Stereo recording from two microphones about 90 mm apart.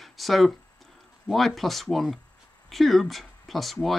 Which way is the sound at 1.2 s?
Centre (ahead or behind).